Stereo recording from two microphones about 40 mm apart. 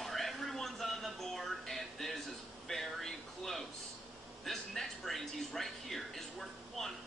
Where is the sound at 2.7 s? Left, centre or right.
Centre.